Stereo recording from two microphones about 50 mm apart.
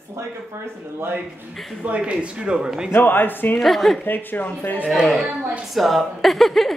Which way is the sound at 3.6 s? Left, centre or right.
Centre.